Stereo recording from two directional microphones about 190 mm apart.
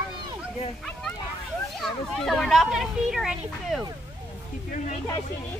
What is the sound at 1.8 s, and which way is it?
A child's voice, centre (ahead or behind).